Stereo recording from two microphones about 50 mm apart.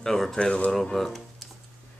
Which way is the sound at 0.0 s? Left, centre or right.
Centre.